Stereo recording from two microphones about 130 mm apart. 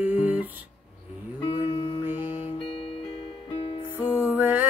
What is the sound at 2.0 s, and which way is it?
Music, 15° right (ahead or behind).